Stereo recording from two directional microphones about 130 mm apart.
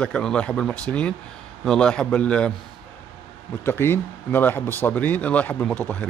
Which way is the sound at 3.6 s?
15° left (ahead or behind).